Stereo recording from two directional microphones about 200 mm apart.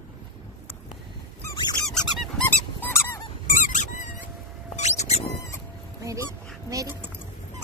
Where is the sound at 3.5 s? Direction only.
40° left (ahead or behind).